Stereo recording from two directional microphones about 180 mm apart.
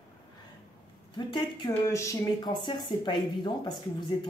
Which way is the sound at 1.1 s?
25° left (ahead or behind).